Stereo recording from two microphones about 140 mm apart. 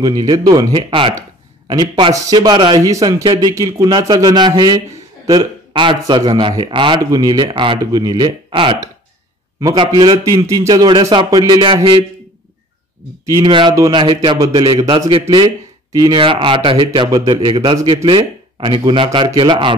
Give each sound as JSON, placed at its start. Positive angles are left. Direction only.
{"t": 0.0, "sound": "speech", "side_deg": -30}
{"t": 10.3, "sound": "speech", "side_deg": -20}
{"t": 10.7, "sound": "speech", "side_deg": -35}
{"t": 13.4, "sound": "speech", "side_deg": -35}
{"t": 14.8, "sound": "speech", "side_deg": -25}